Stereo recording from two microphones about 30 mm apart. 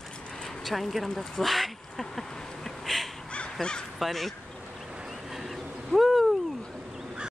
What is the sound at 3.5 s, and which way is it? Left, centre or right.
Speech, left.